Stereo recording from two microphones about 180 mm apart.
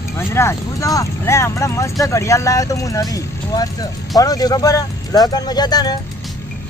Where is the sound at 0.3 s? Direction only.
15° left (ahead or behind).